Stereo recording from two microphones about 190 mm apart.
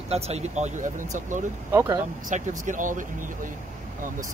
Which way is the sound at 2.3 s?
40° right (ahead or behind).